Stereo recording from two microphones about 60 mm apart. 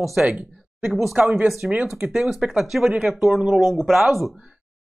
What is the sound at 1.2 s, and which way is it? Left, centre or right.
Speech, right.